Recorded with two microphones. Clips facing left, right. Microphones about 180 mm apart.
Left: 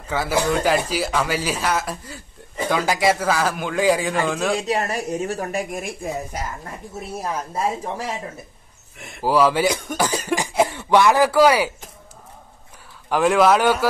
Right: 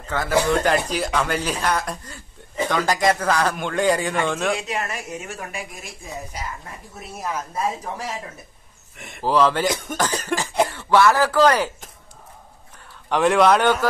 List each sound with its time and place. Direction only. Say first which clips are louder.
0.1 s speech: right 1 dB; 5° left (ahead or behind)
4.6 s a woman's voice: left 5 dB; 35° left (ahead or behind); by 6.4 s 55° left (ahead or behind)
7.2 s speech: left 1 dB; 30° left (ahead or behind)
8.9 s speech: left 1 dB; centre (ahead or behind)
9.9 s cough: left 2 dB; 10° left (ahead or behind)
10.7 s speech: even; 15° left (ahead or behind)
13.1 s speech: even; centre (ahead or behind)